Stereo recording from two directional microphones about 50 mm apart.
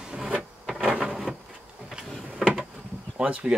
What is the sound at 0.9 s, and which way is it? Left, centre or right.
Printer, right.